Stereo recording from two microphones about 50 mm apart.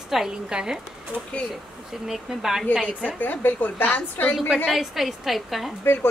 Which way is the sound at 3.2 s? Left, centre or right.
Left.